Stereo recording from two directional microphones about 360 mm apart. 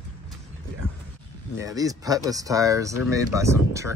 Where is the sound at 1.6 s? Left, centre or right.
Centre.